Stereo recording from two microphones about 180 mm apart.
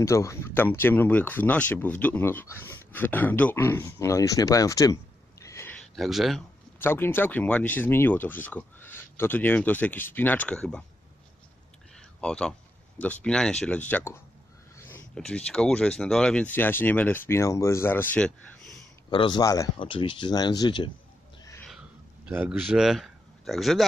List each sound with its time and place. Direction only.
0.0 s speech: 15° left (ahead or behind)
5.8 s speech: centre (ahead or behind)
6.8 s speech: 10° left (ahead or behind)
12.2 s speech: 5° left (ahead or behind)
19.0 s speech: 25° left (ahead or behind)
21.6 s a sound: 5° right (ahead or behind)